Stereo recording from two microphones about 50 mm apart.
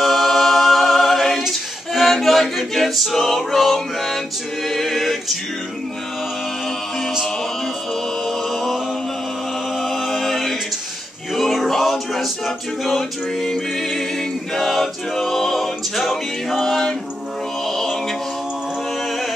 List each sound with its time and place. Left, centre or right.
0.0 s a capella: centre
4.6 s music: centre
8.3 s mantra: centre
9.8 s music: centre
14.5 s a capella: centre
17.6 s music: centre